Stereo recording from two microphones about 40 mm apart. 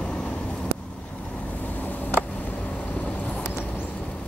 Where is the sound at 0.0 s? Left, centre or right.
Centre.